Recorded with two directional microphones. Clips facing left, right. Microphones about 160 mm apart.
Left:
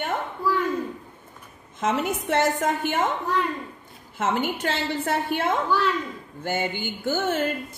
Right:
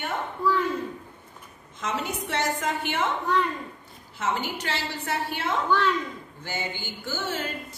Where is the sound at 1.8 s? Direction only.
50° left (ahead or behind).